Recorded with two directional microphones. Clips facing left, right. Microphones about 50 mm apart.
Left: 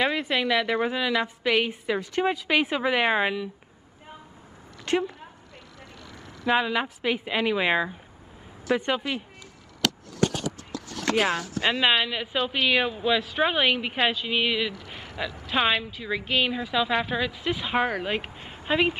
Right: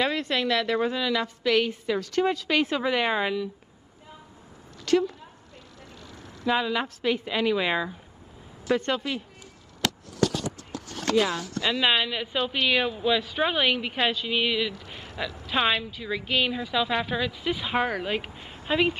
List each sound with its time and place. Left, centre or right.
0.0 s a woman's voice: centre
4.8 s a sound: left
6.4 s a woman's voice: centre
11.1 s speech: left
11.8 s a woman's voice: centre
14.7 s a sound: centre
15.4 s a woman's voice: centre